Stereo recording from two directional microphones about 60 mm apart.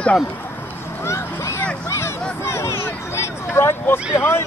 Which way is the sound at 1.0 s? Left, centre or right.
Left.